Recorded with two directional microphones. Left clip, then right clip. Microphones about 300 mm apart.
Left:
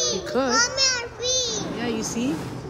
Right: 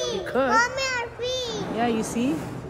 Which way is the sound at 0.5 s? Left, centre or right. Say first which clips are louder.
Left 2 dB; right.